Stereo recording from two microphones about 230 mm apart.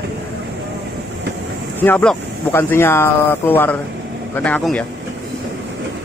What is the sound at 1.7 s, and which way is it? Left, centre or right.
Speech, centre.